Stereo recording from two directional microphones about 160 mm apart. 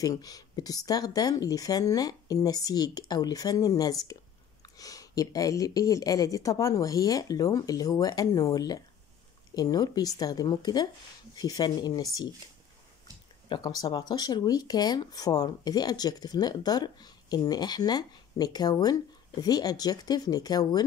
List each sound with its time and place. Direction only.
0.0 s speech: 25° left (ahead or behind)
13.5 s speech: 25° left (ahead or behind)